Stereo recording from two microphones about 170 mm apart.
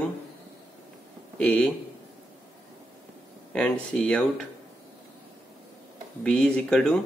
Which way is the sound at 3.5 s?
5° left (ahead or behind).